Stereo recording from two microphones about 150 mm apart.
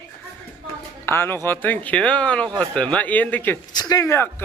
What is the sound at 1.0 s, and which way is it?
Speech, 15° left (ahead or behind).